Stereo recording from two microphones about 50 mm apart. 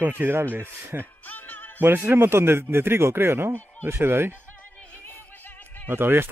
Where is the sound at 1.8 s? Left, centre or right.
Right.